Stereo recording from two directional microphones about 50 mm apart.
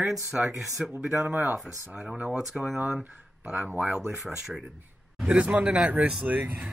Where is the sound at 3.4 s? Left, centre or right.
Right.